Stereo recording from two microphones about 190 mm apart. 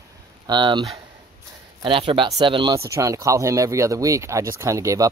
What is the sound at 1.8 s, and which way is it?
Speech, 25° right (ahead or behind).